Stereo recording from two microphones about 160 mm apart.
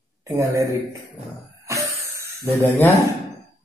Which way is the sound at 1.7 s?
20° right (ahead or behind).